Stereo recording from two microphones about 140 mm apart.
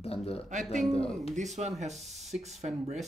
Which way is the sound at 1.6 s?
50° right (ahead or behind).